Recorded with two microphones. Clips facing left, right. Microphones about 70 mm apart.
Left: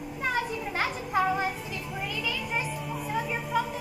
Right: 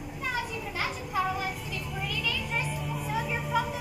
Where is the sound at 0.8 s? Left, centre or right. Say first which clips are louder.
Left 3 dB; left.